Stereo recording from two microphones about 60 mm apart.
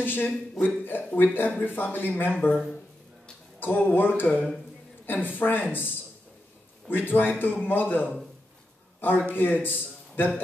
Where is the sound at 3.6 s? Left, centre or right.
Left.